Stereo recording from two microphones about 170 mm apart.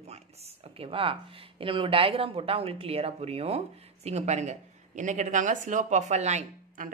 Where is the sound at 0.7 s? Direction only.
30° right (ahead or behind).